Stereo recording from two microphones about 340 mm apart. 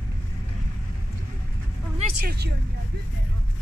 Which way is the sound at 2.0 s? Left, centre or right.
Right.